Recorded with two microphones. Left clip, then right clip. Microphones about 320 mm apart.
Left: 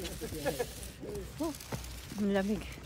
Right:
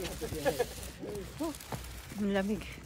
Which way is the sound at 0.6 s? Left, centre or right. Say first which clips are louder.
Right 3 dB; right.